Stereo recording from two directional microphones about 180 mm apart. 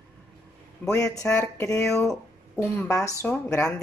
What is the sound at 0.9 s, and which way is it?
Speech, 15° left (ahead or behind).